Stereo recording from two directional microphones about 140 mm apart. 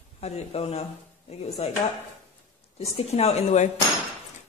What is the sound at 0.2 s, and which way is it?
A woman's voice, 45° left (ahead or behind).